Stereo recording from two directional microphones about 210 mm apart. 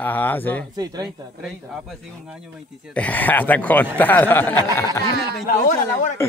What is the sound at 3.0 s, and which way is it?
Speech, 10° left (ahead or behind).